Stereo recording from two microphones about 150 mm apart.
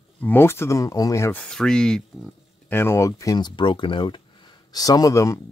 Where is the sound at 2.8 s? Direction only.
20° left (ahead or behind).